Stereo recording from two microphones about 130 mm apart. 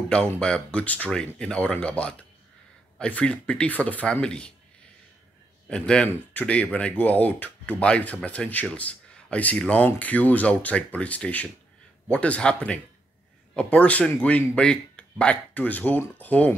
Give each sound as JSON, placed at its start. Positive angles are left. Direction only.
{"t": 0.1, "sound": "speech", "side_deg": 5}
{"t": 5.7, "sound": "speech", "side_deg": 5}